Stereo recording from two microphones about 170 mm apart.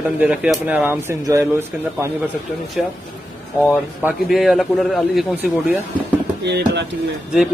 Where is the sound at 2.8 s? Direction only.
Centre (ahead or behind).